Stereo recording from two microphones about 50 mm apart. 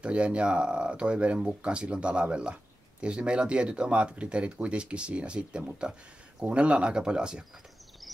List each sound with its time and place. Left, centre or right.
0.0 s speech: right